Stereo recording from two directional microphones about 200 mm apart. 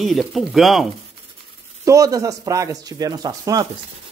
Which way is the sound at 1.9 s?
15° right (ahead or behind).